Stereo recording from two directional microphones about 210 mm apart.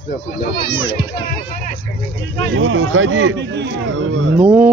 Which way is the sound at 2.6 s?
65° right (ahead or behind).